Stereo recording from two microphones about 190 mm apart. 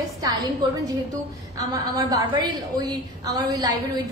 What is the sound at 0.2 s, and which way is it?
A woman's voice, 20° right (ahead or behind).